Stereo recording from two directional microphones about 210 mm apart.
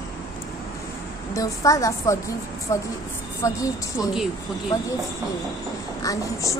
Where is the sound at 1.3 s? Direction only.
15° left (ahead or behind).